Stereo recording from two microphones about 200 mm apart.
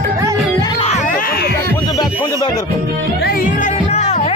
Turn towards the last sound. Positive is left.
turn(degrees=30)  # may be behind; listen again after turning